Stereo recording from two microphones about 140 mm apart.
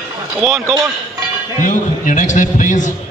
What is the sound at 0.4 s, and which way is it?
Speech, centre (ahead or behind).